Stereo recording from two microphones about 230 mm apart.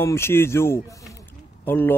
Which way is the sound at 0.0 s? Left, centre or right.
Centre.